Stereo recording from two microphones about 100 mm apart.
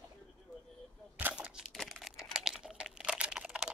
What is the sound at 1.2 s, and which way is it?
Crushing, 15° right (ahead or behind).